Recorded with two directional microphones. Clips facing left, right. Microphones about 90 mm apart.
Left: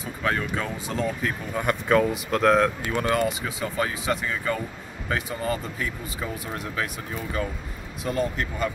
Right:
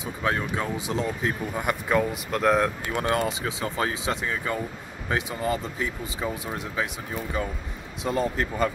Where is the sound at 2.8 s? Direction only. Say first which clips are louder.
Left 1 dB; 25° right (ahead or behind).